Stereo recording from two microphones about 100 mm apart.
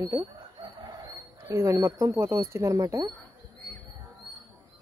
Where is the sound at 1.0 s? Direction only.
30° right (ahead or behind).